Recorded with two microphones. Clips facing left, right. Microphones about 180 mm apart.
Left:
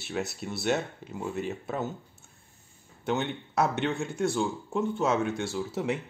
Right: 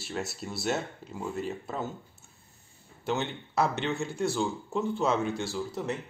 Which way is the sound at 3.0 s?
Centre (ahead or behind).